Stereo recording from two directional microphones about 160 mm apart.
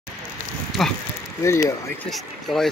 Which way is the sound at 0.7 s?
Centre (ahead or behind).